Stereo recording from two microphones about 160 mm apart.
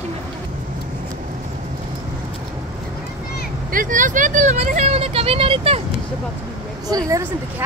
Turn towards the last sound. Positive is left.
turn(degrees=-20)  # may be behind; listen again after turning